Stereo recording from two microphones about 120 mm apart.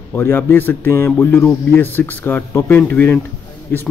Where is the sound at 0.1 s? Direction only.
15° left (ahead or behind).